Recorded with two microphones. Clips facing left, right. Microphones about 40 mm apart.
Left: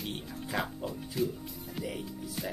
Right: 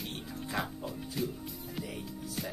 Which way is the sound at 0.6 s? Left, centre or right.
Centre.